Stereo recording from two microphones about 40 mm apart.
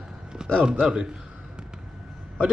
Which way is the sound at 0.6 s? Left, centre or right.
Right.